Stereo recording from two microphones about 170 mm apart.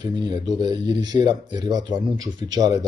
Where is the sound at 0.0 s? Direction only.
25° right (ahead or behind).